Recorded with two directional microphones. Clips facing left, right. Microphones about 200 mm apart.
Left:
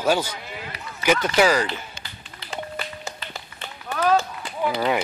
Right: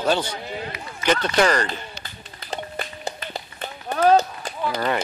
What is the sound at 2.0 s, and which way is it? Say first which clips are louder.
Run: right 1 dB; 45° right (ahead or behind).